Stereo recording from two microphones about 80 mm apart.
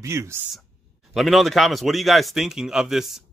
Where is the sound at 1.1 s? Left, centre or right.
Centre.